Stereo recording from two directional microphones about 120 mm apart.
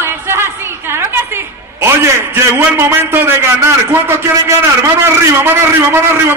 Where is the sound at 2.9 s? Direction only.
20° right (ahead or behind).